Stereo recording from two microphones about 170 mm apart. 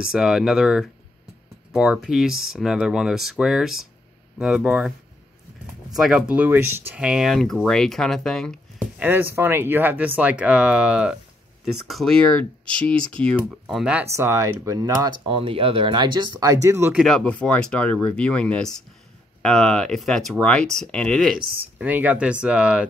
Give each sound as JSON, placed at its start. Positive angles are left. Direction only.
{"t": 0.0, "sound": "speech", "side_deg": -5}
{"t": 5.9, "sound": "speech", "side_deg": -5}
{"t": 9.0, "sound": "speech", "side_deg": -10}
{"t": 13.4, "sound": "speech", "side_deg": -5}
{"t": 14.0, "sound": "speech", "side_deg": -15}
{"t": 15.3, "sound": "speech", "side_deg": -30}
{"t": 16.9, "sound": "speech", "side_deg": 5}